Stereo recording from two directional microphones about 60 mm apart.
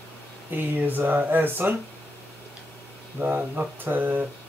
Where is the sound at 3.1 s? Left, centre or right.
Right.